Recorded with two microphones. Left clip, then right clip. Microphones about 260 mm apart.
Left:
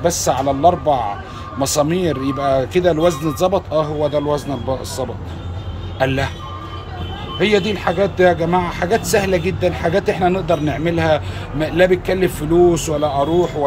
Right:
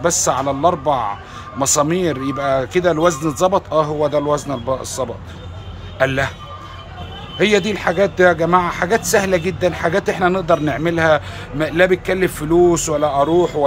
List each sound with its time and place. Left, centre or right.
0.0 s a man's voice: centre
5.9 s a man's voice: centre
7.3 s a man's voice: centre
13.3 s speech: right